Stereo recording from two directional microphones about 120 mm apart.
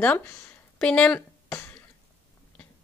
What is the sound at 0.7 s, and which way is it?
Speech, 10° left (ahead or behind).